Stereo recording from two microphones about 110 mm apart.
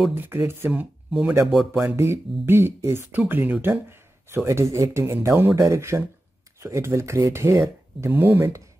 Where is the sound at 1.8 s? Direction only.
25° right (ahead or behind).